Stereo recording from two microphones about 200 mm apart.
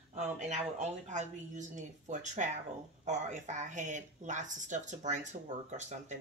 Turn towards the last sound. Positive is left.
turn(degrees=-35)  # may be behind; listen again after turning